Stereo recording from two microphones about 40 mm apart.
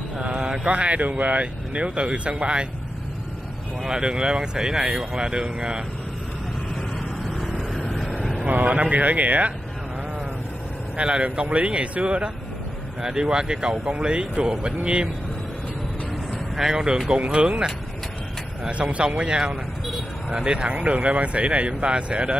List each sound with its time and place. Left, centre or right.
0.2 s mantra: right
0.7 s speech: right
3.8 s speech: right
7.2 s vehicle: centre
8.5 s speech: right
11.0 s speech: right
16.5 s speech: centre
18.7 s speech: right
19.0 s speech: centre